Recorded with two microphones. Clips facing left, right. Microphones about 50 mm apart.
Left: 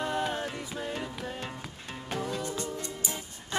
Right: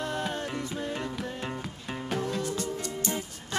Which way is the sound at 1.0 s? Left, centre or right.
Centre.